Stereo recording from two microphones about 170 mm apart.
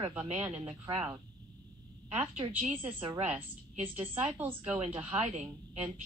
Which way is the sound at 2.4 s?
25° right (ahead or behind).